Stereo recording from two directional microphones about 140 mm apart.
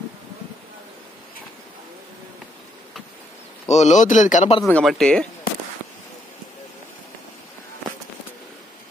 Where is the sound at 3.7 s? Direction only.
55° left (ahead or behind).